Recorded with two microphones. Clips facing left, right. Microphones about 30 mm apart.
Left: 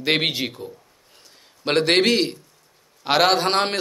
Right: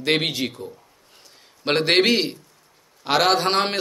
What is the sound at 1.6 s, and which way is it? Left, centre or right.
Speech, centre.